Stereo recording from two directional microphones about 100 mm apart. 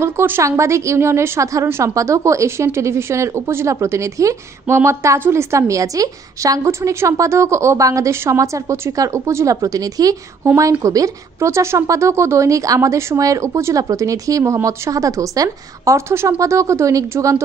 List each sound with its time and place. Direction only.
0.0 s a woman's voice: 25° right (ahead or behind)